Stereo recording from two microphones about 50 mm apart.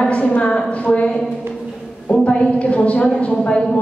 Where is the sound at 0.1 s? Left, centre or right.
Left.